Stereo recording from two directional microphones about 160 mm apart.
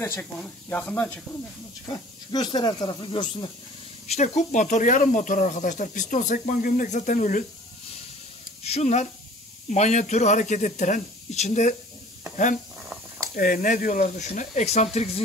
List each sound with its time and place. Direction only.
0.0 s speech: 15° left (ahead or behind)
2.3 s speech: 25° left (ahead or behind)
4.1 s speech: 45° left (ahead or behind)
8.6 s speech: 45° left (ahead or behind)
13.4 s speech: 55° left (ahead or behind)